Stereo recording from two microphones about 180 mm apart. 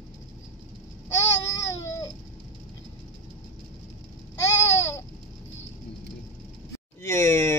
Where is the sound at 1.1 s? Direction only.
15° left (ahead or behind).